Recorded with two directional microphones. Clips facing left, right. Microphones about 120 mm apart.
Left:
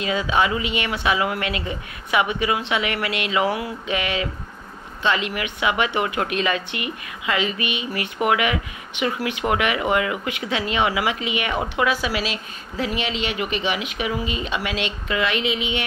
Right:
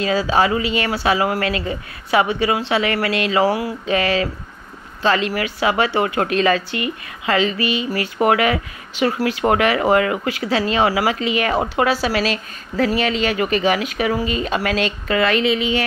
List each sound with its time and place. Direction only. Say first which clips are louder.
0.0 s a woman's voice: right 4 dB; 35° right (ahead or behind)